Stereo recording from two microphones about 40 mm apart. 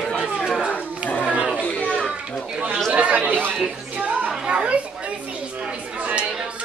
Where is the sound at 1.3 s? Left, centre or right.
Right.